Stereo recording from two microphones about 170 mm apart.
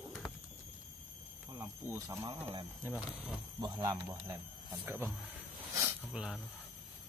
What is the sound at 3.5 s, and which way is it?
Speech, 20° right (ahead or behind).